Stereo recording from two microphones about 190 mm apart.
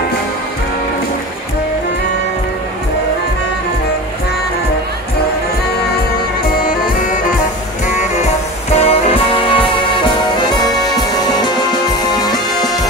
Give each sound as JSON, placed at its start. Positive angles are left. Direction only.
{"t": 8.7, "sound": "music", "side_deg": 30}